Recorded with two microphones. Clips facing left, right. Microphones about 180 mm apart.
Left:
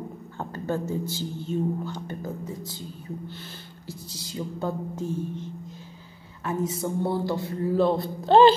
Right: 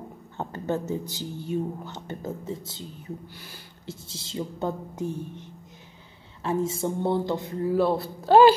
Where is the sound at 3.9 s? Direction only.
25° right (ahead or behind).